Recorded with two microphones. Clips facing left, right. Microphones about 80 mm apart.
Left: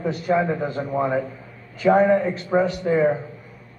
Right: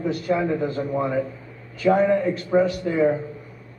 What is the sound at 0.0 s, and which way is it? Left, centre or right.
Speech, left.